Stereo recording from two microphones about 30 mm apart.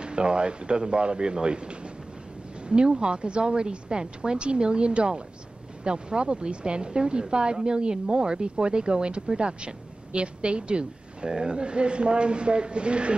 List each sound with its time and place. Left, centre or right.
0.0 s speech: right